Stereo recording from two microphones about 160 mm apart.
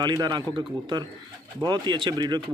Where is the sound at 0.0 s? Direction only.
25° right (ahead or behind).